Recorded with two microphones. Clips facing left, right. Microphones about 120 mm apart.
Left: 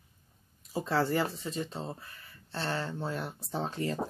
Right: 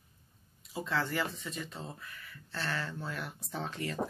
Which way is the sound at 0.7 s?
35° left (ahead or behind).